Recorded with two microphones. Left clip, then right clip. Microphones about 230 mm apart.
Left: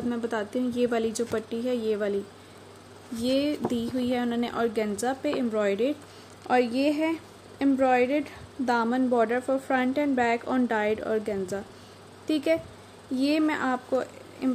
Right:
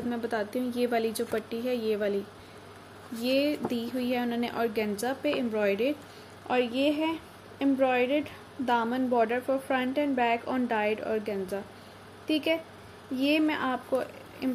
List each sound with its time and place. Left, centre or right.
0.1 s a woman's voice: left
3.2 s a woman's voice: left
6.6 s speech: left
7.0 s a woman's voice: left